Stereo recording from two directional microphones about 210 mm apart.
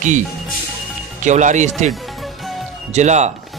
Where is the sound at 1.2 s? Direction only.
35° right (ahead or behind).